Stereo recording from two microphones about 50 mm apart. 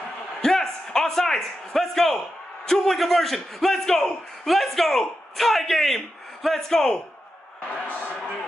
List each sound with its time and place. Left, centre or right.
0.4 s a sound: centre
2.6 s a man's voice: centre
7.7 s speech: left